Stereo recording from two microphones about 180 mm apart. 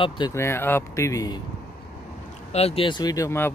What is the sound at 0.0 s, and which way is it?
Speech, 25° left (ahead or behind).